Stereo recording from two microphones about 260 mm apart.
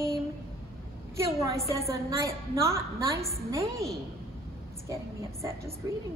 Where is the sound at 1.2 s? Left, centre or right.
Centre.